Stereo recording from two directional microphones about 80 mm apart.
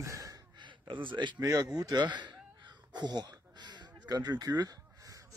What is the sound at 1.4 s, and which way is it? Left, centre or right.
Speech, right.